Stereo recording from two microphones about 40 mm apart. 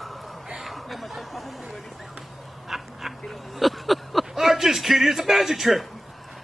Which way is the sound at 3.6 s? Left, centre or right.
Centre.